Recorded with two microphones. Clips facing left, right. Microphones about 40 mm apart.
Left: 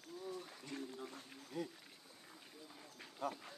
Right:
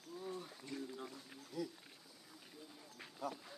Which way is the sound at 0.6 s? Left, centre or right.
Left.